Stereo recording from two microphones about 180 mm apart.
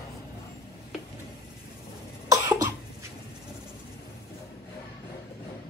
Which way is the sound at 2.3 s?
20° right (ahead or behind).